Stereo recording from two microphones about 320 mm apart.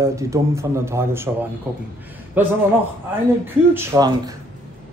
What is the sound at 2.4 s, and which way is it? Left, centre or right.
A man's voice, centre.